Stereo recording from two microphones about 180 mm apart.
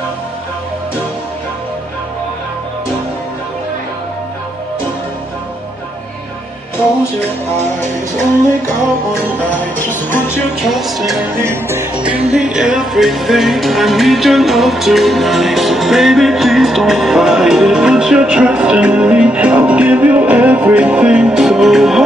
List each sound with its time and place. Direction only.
9.5 s music: 10° left (ahead or behind)
10.6 s music: centre (ahead or behind)